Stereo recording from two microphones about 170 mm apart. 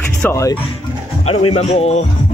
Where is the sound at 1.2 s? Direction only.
40° left (ahead or behind).